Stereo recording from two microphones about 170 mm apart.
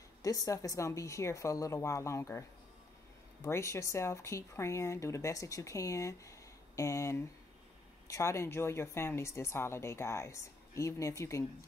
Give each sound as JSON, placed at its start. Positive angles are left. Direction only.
{"t": 0.2, "sound": "speech", "side_deg": 20}
{"t": 3.4, "sound": "speech", "side_deg": 15}